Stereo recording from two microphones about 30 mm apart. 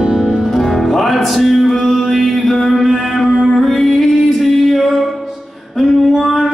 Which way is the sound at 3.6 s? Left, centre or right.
Centre.